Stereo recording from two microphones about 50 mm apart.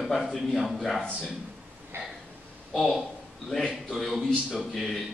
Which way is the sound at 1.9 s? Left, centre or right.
Right.